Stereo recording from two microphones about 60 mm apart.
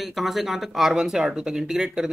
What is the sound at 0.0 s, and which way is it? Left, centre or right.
Speech, centre.